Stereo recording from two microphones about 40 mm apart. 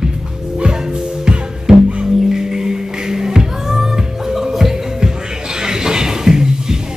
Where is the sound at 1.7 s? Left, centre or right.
Centre.